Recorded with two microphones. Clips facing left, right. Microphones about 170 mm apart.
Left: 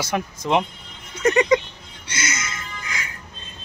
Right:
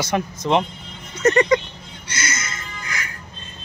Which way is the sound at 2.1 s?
20° left (ahead or behind).